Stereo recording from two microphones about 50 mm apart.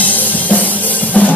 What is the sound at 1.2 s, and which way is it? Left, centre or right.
Drum kit, left.